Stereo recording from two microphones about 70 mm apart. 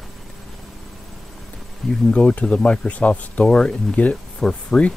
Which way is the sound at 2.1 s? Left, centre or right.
Centre.